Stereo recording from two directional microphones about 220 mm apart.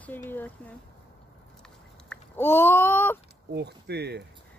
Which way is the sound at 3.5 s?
50° right (ahead or behind).